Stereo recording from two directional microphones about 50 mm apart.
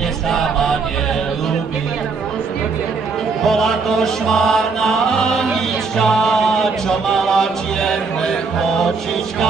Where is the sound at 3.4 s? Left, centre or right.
Centre.